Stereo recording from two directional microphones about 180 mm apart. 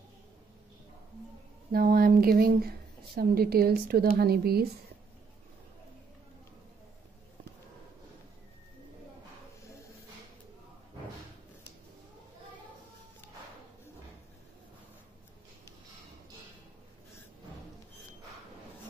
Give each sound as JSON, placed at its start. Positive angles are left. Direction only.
{"t": 1.7, "sound": "a woman's voice", "side_deg": -55}